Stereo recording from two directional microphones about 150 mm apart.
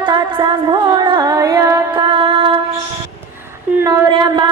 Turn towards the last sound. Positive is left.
turn(degrees=-30)  # may be behind; listen again after turning